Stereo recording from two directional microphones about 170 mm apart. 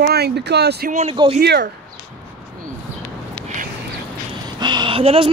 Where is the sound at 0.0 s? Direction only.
75° right (ahead or behind).